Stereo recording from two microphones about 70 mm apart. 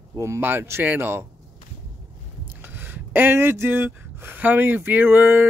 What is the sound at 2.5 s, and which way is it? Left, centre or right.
Speech, right.